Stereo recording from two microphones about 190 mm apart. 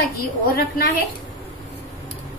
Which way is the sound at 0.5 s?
55° left (ahead or behind).